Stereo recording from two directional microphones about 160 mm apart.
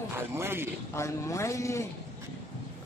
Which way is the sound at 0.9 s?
20° left (ahead or behind).